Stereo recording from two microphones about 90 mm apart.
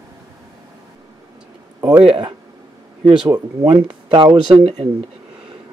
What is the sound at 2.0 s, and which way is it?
Speech, 60° right (ahead or behind).